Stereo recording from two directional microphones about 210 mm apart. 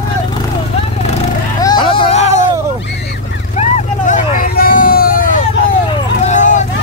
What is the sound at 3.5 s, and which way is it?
Vehicle, 35° left (ahead or behind).